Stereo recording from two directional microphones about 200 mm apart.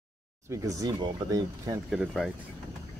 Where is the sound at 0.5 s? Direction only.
15° right (ahead or behind).